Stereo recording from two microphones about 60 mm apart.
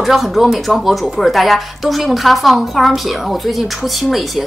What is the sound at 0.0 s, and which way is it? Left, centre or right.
Speech, centre.